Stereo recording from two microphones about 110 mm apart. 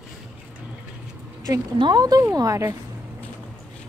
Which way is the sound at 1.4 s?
35° right (ahead or behind).